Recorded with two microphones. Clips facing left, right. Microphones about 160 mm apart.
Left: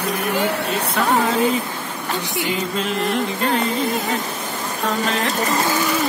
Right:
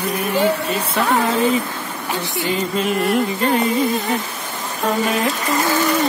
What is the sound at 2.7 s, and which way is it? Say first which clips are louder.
Music: right 5 dB; 5° right (ahead or behind).